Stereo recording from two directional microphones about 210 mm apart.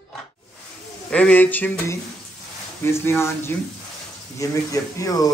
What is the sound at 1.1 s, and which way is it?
A man's voice, 5° left (ahead or behind).